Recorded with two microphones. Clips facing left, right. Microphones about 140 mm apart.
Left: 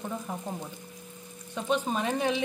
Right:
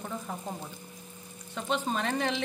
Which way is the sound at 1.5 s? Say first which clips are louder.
Left 2 dB; 10° left (ahead or behind).